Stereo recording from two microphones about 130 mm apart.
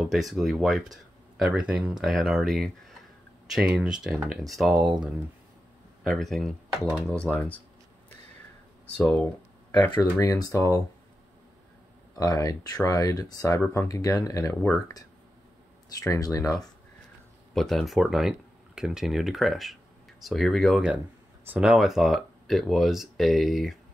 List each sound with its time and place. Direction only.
0.0 s speech: centre (ahead or behind)
8.9 s speech: 5° left (ahead or behind)
10.1 s speech: 25° left (ahead or behind)
12.2 s speech: 25° left (ahead or behind)
16.0 s speech: 25° left (ahead or behind)
17.6 s speech: centre (ahead or behind)